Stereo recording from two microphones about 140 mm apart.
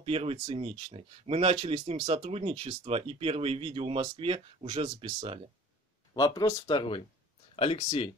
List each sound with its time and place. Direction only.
0.0 s speech: 45° right (ahead or behind)
6.1 s speech: 25° left (ahead or behind)